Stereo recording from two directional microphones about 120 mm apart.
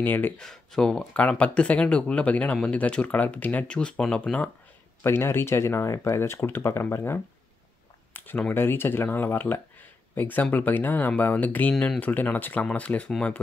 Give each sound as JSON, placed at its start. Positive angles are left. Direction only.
{"t": 0.0, "sound": "speech", "side_deg": 15}
{"t": 0.4, "sound": "speech", "side_deg": 5}
{"t": 11.7, "sound": "speech", "side_deg": 0}
{"t": 12.0, "sound": "speech", "side_deg": 15}